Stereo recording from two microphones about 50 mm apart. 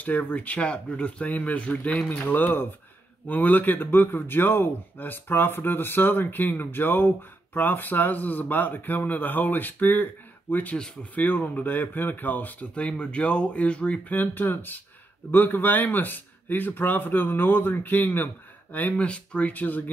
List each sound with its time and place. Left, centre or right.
0.0 s a man's voice: left
12.7 s speech: left
14.1 s a man's voice: left
19.0 s a man's voice: left